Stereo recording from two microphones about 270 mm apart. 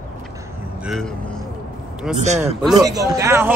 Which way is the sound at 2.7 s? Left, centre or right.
Centre.